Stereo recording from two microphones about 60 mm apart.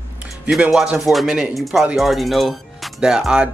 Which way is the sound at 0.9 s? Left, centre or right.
Centre.